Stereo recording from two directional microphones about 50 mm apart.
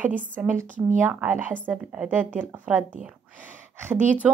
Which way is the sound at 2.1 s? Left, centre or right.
Right.